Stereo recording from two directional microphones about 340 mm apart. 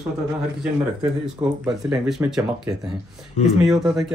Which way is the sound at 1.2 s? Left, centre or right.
Centre.